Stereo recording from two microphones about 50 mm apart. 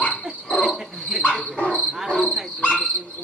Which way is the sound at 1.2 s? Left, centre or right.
Left.